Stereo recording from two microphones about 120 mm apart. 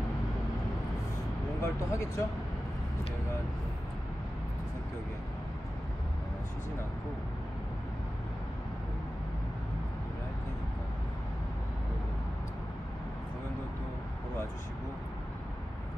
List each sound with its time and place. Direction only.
1.6 s speech: 25° left (ahead or behind)